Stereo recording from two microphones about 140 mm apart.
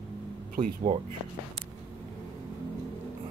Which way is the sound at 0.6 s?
35° right (ahead or behind).